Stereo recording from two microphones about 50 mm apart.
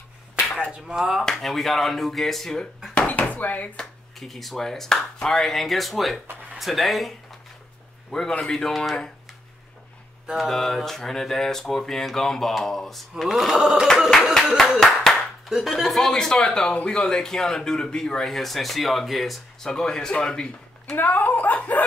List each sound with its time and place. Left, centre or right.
0.7 s speech: centre
1.3 s speech: centre
2.9 s dishes: left
4.2 s speech: centre
8.1 s speech: centre
10.3 s speech: centre
13.6 s speech: centre
14.8 s clapping: centre
15.5 s speech: centre
20.9 s speech: left